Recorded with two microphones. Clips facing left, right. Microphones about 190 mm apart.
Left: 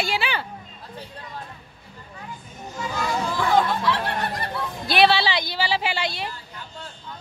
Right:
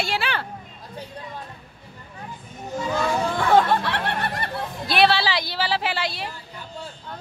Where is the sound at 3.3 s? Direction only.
60° right (ahead or behind).